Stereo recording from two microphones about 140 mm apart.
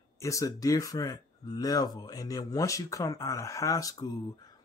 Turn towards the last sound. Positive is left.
turn(degrees=25)  # may be behind; listen again after turning